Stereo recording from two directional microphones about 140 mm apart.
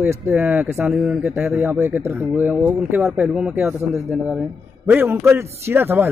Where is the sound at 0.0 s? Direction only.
10° right (ahead or behind).